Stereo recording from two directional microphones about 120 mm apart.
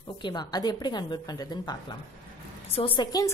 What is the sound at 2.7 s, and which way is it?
Speech, 50° left (ahead or behind).